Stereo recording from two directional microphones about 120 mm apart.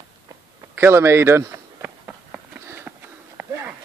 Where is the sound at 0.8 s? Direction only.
20° right (ahead or behind).